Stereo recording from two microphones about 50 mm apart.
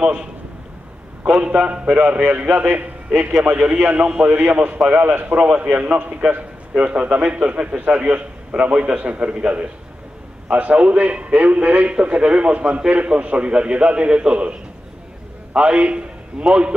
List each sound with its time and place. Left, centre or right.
0.0 s a man's voice: centre; by 2.8 s right
3.1 s a man's voice: centre
3.7 s a man's voice: right
4.4 s a man's voice: right
15.5 s a man's voice: right